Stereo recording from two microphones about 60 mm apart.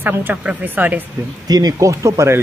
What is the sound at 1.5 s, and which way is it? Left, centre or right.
Speech, right.